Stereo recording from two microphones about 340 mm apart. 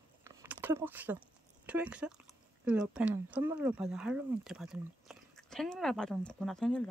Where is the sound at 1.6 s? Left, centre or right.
Centre.